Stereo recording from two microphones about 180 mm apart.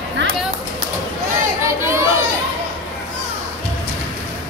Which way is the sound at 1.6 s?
15° right (ahead or behind).